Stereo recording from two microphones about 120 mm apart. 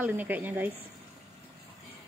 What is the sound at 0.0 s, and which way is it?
Speech, 15° right (ahead or behind).